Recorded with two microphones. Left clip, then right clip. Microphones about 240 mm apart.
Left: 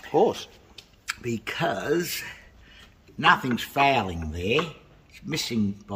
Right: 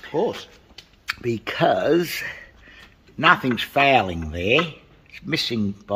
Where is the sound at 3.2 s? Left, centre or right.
Centre.